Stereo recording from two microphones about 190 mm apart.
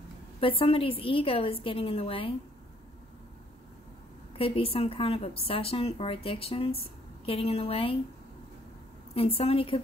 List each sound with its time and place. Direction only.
0.4 s a woman's voice: 30° left (ahead or behind)
4.4 s a woman's voice: 30° left (ahead or behind)
9.1 s a woman's voice: 30° left (ahead or behind)